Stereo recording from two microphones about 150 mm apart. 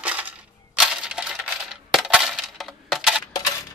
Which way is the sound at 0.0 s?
10° right (ahead or behind).